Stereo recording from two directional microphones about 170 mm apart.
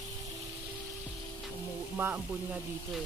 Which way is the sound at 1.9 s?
10° right (ahead or behind).